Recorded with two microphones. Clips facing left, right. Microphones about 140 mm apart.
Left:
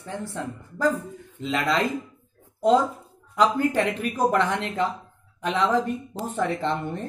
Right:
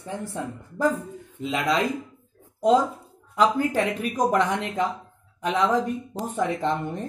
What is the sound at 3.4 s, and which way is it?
Speech, 10° right (ahead or behind).